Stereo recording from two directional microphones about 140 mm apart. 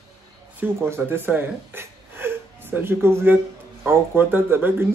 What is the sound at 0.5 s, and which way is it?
A man's voice, 15° right (ahead or behind).